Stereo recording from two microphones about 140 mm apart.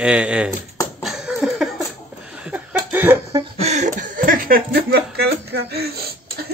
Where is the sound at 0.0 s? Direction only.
10° right (ahead or behind).